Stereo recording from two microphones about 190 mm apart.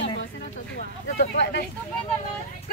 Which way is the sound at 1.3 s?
60° left (ahead or behind).